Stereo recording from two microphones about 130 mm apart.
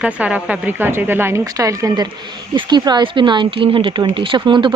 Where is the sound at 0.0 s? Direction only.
10° right (ahead or behind).